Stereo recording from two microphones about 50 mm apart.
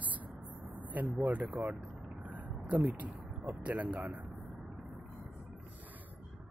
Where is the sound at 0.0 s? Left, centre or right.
Right.